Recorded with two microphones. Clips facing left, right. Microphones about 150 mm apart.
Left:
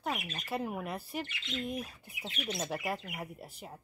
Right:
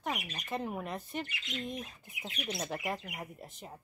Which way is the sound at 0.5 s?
5° left (ahead or behind).